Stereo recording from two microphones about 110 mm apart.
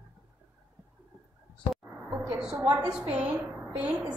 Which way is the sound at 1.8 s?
15° right (ahead or behind).